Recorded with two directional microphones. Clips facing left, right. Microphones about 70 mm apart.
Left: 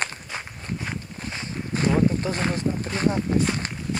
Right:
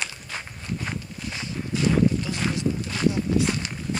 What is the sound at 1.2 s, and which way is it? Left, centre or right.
Walk, left.